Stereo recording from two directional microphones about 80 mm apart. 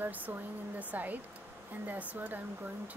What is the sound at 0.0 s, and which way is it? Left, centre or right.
Speech, right.